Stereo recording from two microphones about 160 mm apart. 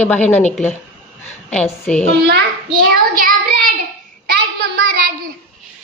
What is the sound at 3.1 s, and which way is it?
Child singing, 60° right (ahead or behind).